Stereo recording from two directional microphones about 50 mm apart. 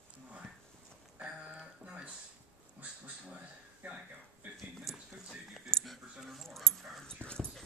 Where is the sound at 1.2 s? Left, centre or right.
Centre.